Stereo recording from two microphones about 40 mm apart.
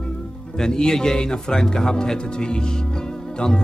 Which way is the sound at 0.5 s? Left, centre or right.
Centre.